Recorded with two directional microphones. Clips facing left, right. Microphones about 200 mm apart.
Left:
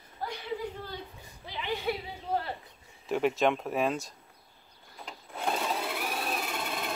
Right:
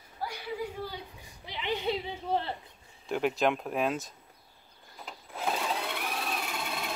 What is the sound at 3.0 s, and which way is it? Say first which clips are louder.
Speech: left 1 dB; centre (ahead or behind).